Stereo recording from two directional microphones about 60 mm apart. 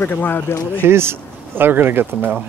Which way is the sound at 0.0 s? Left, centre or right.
Left.